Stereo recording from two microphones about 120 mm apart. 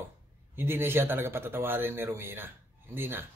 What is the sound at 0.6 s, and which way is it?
A man's voice, 20° right (ahead or behind).